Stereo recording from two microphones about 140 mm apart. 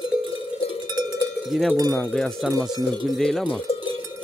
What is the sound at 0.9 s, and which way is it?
Cowbell, 30° right (ahead or behind).